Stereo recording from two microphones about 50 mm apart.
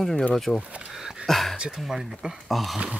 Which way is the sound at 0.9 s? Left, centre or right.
Centre.